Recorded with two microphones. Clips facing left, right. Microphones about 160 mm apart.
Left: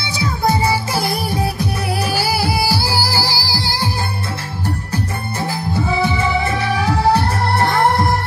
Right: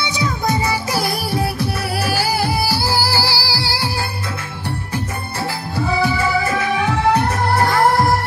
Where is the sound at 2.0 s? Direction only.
15° left (ahead or behind).